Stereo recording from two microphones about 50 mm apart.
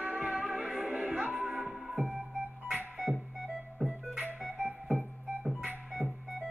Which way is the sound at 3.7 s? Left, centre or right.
Centre.